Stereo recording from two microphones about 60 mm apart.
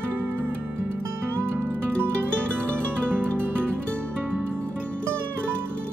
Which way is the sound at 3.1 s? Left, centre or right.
Right.